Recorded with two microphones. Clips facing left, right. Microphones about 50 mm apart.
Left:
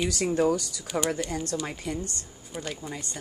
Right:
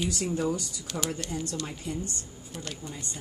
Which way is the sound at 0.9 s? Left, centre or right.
Left.